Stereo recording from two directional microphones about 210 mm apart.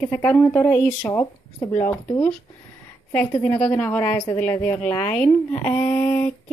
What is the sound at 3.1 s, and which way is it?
A woman's voice, 5° left (ahead or behind).